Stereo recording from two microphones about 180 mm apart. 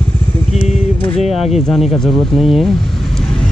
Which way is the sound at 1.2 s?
Centre (ahead or behind).